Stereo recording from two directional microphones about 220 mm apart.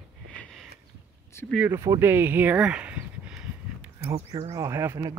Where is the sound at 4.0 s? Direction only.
20° right (ahead or behind).